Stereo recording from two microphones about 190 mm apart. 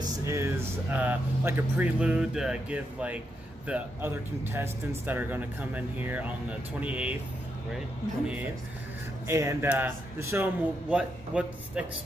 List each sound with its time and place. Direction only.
0.0 s speech: 15° right (ahead or behind)
9.3 s speech: 15° right (ahead or behind)